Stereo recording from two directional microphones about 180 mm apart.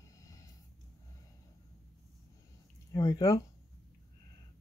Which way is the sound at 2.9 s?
20° left (ahead or behind).